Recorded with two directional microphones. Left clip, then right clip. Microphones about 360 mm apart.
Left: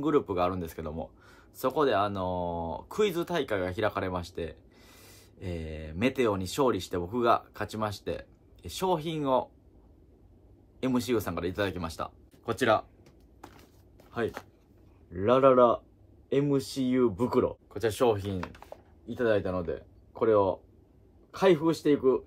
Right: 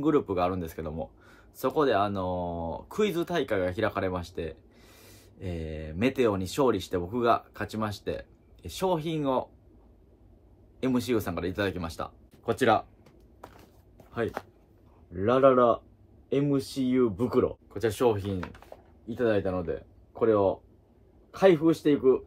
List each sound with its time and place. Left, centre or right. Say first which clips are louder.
0.0 s speech: right 1 dB; centre
10.8 s speech: right 1 dB; centre
15.1 s speech: even; centre